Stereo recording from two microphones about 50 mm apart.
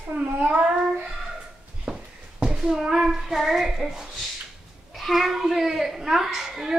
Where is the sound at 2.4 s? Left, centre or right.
Centre.